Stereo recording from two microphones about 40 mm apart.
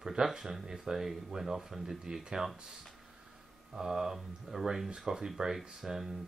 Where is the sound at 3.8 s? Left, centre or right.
Centre.